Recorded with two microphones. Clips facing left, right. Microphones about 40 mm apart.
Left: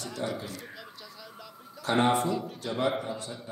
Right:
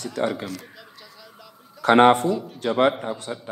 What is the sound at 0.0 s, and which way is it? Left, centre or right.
Speech, right.